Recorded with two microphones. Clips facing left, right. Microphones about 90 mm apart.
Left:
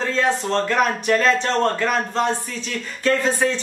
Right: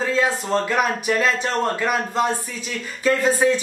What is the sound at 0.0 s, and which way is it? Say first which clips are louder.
Speech: even; 5° right (ahead or behind).